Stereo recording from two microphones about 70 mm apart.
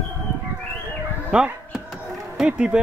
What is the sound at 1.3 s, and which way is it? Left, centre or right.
Dog, centre.